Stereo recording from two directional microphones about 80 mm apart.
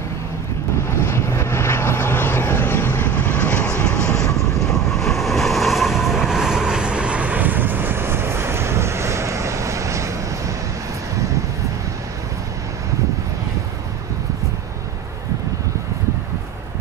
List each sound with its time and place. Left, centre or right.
0.8 s vehicle: left
3.3 s vehicle: centre; by 10.1 s right